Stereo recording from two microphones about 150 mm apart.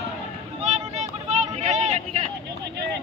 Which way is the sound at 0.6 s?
50° right (ahead or behind).